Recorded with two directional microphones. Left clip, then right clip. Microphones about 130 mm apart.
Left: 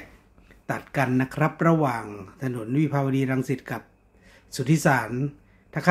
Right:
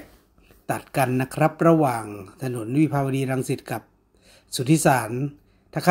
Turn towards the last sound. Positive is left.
turn(degrees=-25)  # may be behind; listen again after turning